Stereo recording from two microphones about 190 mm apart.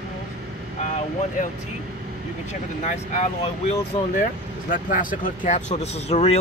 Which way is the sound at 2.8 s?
40° left (ahead or behind).